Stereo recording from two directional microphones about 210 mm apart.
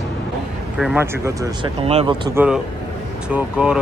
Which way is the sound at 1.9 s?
30° right (ahead or behind).